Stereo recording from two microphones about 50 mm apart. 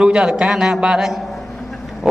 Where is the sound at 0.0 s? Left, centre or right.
Centre.